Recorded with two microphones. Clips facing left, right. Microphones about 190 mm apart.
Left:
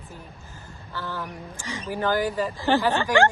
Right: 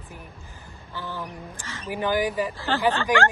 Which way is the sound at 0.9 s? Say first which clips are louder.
Left 1 dB; 15° right (ahead or behind).